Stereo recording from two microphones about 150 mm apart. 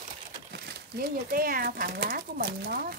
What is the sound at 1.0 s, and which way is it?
Speech, 75° right (ahead or behind).